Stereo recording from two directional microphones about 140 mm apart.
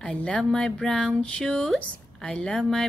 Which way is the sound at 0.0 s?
5° left (ahead or behind).